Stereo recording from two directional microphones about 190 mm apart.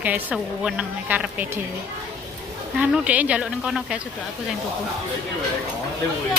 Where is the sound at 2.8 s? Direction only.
10° right (ahead or behind).